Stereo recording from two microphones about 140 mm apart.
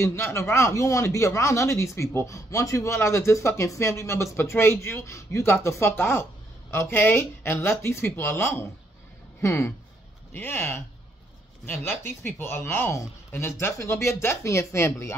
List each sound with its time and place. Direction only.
0.0 s speech: 20° left (ahead or behind)